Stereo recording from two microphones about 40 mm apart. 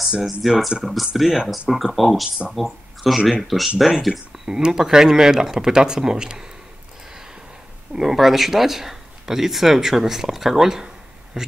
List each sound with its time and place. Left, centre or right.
0.2 s speech: centre
4.5 s speech: centre
7.9 s speech: centre